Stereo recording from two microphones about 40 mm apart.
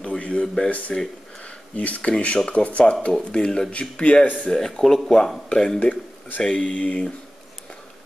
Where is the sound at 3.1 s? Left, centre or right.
Centre.